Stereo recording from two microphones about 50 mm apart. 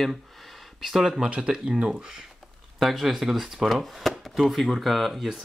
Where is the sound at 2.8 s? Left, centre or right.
Centre.